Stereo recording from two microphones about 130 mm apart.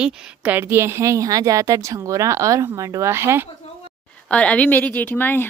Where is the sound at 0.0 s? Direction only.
15° right (ahead or behind).